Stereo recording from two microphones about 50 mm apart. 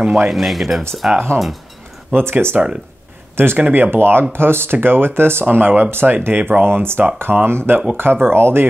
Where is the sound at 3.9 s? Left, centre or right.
Right.